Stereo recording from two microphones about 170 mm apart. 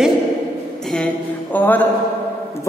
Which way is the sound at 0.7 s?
5° left (ahead or behind).